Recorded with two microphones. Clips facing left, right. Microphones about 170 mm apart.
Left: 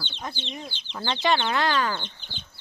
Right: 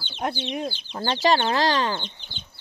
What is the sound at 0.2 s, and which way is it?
Speech, 65° right (ahead or behind).